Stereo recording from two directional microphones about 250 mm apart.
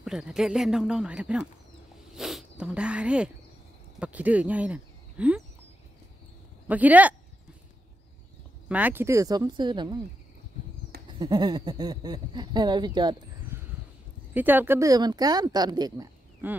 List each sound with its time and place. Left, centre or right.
0.0 s speech: centre
6.7 s speech: centre
8.6 s speech: centre
11.1 s speech: centre